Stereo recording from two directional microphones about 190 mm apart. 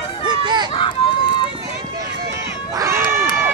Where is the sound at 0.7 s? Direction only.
30° left (ahead or behind).